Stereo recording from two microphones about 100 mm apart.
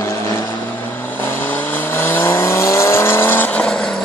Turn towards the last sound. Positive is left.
turn(degrees=15)  # may be behind; listen again after turning